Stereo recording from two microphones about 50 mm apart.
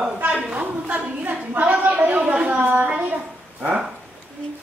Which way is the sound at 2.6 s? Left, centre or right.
Right.